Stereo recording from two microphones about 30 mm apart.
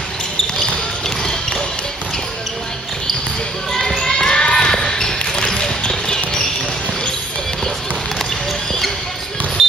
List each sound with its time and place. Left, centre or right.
3.7 s basketball bounce: centre
5.2 s basketball bounce: left
9.6 s music: centre